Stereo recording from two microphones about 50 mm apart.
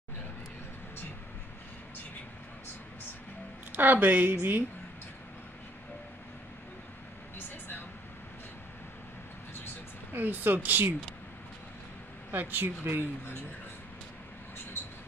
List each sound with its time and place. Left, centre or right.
3.7 s speech: right
7.3 s vehicle: left
10.1 s speech: right
12.3 s speech: right